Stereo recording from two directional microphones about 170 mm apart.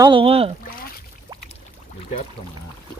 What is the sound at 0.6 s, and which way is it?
Rowboat, 60° left (ahead or behind).